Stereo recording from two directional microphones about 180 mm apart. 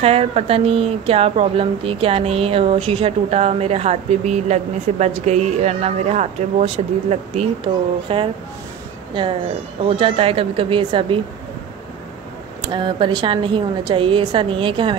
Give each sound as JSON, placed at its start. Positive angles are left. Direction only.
{"t": 0.0, "sound": "a woman's voice", "side_deg": -35}
{"t": 12.6, "sound": "a woman's voice", "side_deg": -25}